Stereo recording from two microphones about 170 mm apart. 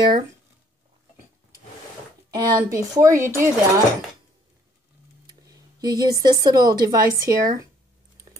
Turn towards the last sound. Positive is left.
turn(degrees=-20)  # may be behind; listen again after turning